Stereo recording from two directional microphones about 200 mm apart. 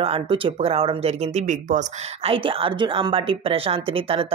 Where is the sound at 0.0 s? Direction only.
25° right (ahead or behind).